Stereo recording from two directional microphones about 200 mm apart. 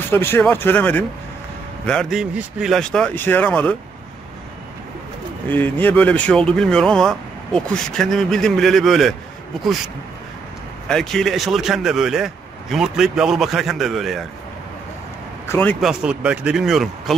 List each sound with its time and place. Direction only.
0.1 s speech: 10° left (ahead or behind)
5.5 s speech: 10° left (ahead or behind)
10.9 s speech: centre (ahead or behind)
15.4 s speech: 10° left (ahead or behind)
15.9 s speech: 5° right (ahead or behind)